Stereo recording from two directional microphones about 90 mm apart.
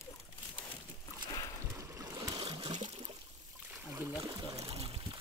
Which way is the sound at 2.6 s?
90° right.